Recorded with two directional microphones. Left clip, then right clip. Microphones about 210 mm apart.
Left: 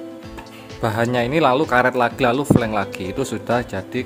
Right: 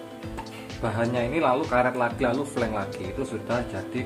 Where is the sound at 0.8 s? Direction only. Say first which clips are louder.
Left 7 dB; 55° left (ahead or behind).